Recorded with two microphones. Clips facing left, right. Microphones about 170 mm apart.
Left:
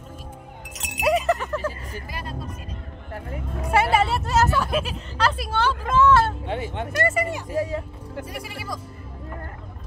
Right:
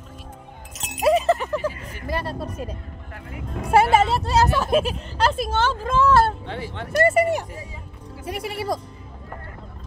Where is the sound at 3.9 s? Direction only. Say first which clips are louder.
Right 2 dB; 40° right (ahead or behind).